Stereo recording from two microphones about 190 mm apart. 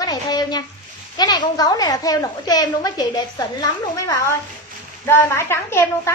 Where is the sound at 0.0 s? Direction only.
20° left (ahead or behind).